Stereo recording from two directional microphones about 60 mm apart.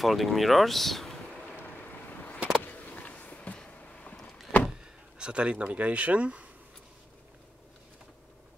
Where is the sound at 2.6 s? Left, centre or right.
Left.